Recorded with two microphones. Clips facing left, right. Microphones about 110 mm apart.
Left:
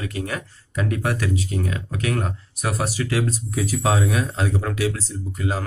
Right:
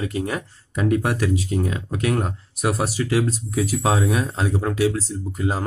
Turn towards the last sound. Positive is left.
turn(degrees=-20)  # may be behind; listen again after turning